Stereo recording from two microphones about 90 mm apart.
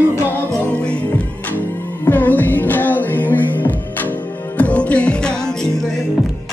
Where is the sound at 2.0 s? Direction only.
20° left (ahead or behind).